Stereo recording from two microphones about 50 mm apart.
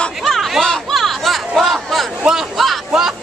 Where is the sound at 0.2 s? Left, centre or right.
Centre.